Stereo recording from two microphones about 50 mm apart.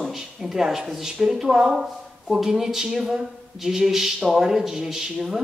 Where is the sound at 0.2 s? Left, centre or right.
Centre.